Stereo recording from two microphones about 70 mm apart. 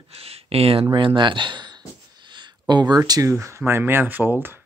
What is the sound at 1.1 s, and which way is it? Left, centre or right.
Speech, right.